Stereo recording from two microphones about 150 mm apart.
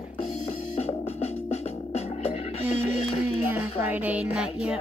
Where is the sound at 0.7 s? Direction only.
45° left (ahead or behind).